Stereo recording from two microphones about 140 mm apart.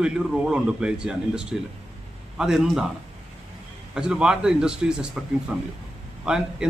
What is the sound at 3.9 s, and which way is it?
A man's voice, 5° right (ahead or behind).